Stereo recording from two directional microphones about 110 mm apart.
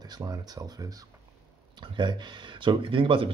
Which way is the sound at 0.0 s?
35° right (ahead or behind).